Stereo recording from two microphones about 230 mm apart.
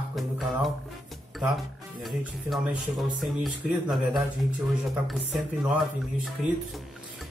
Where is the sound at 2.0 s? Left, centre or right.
Centre.